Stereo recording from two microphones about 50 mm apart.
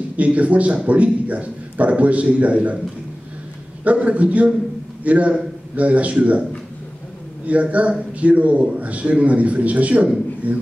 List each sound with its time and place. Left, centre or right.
0.2 s a man's voice: right
3.8 s a man's voice: right
7.4 s a man's voice: right